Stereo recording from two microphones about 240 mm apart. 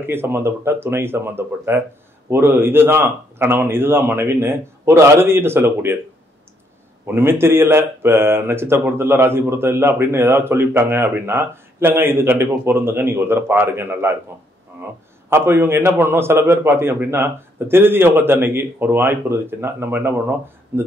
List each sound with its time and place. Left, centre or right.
0.0 s speech: centre
7.2 s speech: centre
15.2 s speech: centre